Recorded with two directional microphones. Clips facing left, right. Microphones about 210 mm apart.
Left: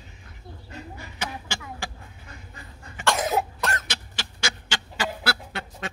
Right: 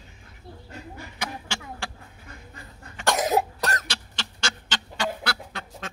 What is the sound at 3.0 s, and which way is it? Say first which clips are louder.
Cough: right 1 dB; 40° right (ahead or behind).